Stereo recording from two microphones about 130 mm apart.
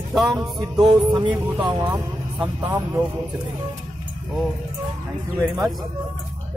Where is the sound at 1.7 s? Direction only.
15° right (ahead or behind).